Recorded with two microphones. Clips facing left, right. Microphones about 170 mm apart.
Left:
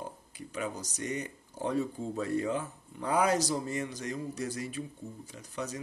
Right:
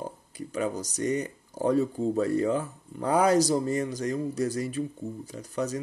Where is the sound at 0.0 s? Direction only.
40° right (ahead or behind).